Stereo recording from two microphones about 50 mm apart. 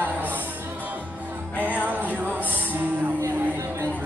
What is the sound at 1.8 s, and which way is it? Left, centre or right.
Music, right.